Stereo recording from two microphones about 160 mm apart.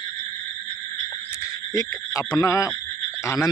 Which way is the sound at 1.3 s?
20° left (ahead or behind).